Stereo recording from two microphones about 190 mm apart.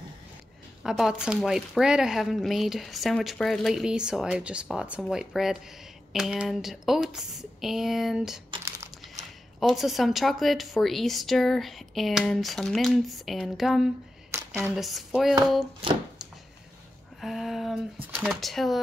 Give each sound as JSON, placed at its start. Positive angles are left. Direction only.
{"t": 0.8, "sound": "speech", "side_deg": 0}
{"t": 9.6, "sound": "speech", "side_deg": 0}
{"t": 14.3, "sound": "a sound", "side_deg": -10}
{"t": 14.8, "sound": "speech", "side_deg": 0}
{"t": 17.2, "sound": "a sound", "side_deg": 0}
{"t": 18.2, "sound": "speech", "side_deg": 0}